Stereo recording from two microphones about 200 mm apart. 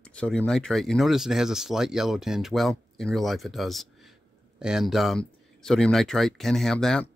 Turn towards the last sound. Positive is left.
turn(degrees=5)  # may be behind; listen again after turning